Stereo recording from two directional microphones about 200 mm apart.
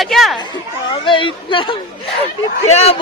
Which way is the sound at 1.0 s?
25° left (ahead or behind).